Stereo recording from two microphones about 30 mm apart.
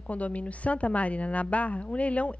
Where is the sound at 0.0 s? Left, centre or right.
Left.